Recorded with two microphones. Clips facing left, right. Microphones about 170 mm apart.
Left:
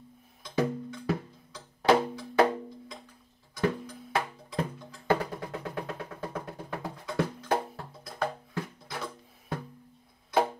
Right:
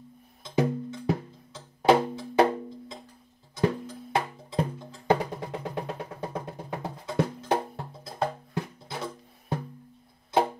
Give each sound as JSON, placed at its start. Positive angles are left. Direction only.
{"t": 0.4, "sound": "music", "side_deg": -20}
{"t": 3.5, "sound": "music", "side_deg": -25}